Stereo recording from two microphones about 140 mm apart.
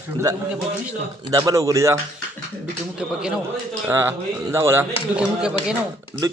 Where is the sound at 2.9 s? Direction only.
5° right (ahead or behind).